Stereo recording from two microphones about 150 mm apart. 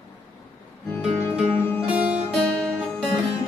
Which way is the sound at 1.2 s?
15° left (ahead or behind).